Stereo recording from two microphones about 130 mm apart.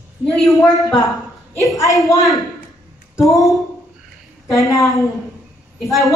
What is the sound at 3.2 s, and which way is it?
Speech, centre (ahead or behind).